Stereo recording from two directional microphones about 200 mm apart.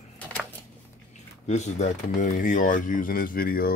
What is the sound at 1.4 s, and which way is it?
Speech, 35° left (ahead or behind).